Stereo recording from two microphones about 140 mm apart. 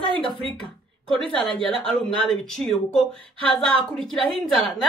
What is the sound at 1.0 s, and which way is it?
Speech, 5° left (ahead or behind).